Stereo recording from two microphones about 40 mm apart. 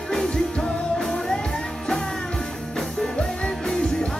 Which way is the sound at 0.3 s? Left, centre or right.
Centre.